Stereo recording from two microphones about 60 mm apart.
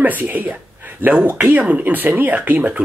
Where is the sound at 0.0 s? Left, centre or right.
Right.